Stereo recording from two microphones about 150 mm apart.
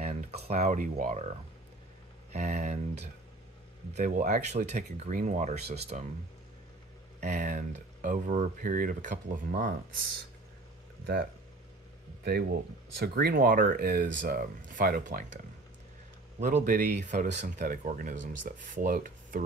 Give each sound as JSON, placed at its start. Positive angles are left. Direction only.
{"t": 0.0, "sound": "speech", "side_deg": -45}
{"t": 2.3, "sound": "speech", "side_deg": -50}
{"t": 3.9, "sound": "speech", "side_deg": -60}
{"t": 7.2, "sound": "speech", "side_deg": -55}
{"t": 12.3, "sound": "speech", "side_deg": -90}
{"t": 16.3, "sound": "speech", "side_deg": -65}